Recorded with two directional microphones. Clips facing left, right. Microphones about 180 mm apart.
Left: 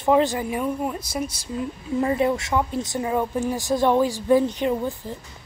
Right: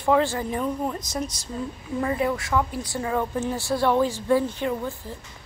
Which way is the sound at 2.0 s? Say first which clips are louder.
Left 3 dB; 25° left (ahead or behind).